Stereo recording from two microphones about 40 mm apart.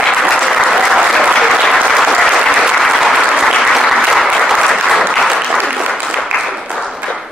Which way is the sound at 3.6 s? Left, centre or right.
Centre.